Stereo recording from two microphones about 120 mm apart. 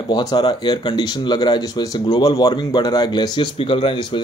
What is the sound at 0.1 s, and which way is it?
Speech, 35° left (ahead or behind).